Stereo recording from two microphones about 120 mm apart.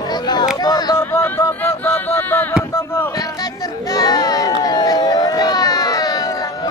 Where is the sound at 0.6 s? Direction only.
35° left (ahead or behind).